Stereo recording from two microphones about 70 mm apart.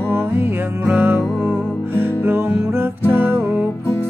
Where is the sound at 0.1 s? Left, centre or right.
Right.